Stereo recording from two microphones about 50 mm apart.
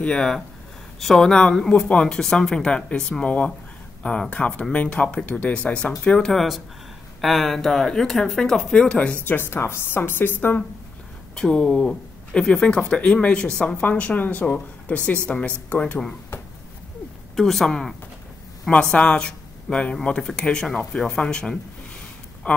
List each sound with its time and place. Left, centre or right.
0.0 s speech: centre
6.1 s speech: centre
7.2 s speech: centre
8.7 s speech: centre
9.2 s a woman's voice: left
11.3 s speech: centre; by 16.0 s left
17.4 s speech: centre
18.7 s speech: centre